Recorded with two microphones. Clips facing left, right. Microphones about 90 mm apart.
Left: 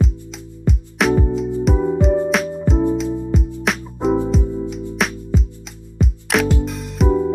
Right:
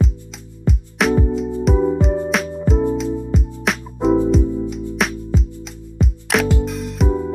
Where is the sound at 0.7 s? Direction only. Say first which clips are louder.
Even; centre (ahead or behind).